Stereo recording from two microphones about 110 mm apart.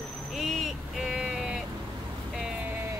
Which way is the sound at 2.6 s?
20° right (ahead or behind).